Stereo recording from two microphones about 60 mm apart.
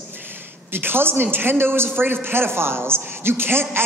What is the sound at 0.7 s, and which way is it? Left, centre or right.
A man's voice, right.